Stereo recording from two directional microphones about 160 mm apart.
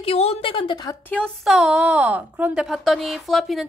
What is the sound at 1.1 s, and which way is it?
Speech, 5° left (ahead or behind).